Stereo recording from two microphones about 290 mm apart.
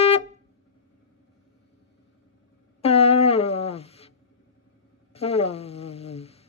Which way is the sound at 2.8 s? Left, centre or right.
Left.